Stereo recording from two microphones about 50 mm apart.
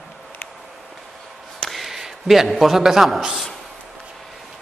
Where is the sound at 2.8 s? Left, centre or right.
Centre.